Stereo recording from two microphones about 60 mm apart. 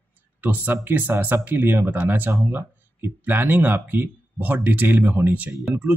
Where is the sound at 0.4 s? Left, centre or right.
Right.